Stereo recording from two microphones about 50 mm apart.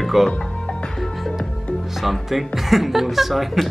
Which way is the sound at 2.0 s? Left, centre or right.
Centre.